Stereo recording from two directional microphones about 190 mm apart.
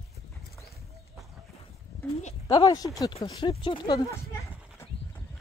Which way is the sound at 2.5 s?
20° left (ahead or behind).